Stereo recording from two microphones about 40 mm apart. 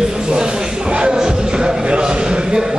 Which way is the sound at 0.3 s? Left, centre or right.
Right.